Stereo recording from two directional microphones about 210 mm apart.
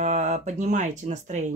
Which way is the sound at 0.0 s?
30° right (ahead or behind).